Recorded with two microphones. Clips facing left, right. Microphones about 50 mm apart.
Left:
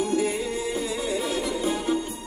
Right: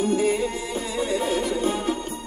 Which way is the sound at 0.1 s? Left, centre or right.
Right.